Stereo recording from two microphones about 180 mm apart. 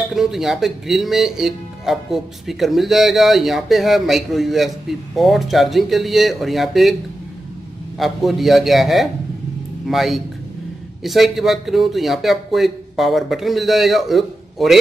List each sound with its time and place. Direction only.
0.1 s speech: centre (ahead or behind)
8.0 s speech: centre (ahead or behind)